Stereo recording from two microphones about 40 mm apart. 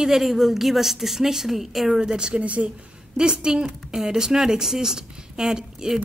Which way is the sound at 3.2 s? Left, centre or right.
Right.